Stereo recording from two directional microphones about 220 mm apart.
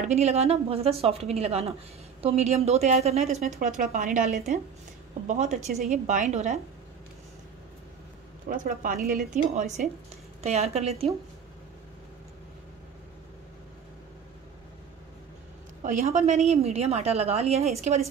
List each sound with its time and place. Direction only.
0.1 s a woman's voice: 30° right (ahead or behind)
8.5 s a woman's voice: 40° right (ahead or behind)
15.8 s a woman's voice: 35° right (ahead or behind)